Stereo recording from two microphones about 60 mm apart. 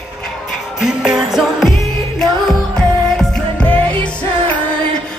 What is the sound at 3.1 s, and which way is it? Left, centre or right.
Music, centre.